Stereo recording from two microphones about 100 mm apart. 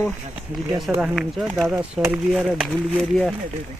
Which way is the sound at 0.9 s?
10° right (ahead or behind).